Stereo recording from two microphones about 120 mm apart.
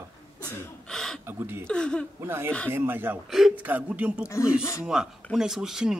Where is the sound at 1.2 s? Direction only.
20° right (ahead or behind).